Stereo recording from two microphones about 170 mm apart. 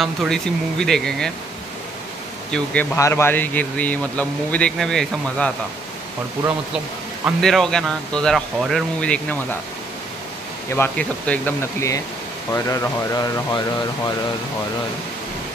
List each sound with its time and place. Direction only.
0.0 s speech: centre (ahead or behind)
2.5 s speech: 10° left (ahead or behind)
7.4 s speech: 5° left (ahead or behind)
10.8 s speech: 10° left (ahead or behind)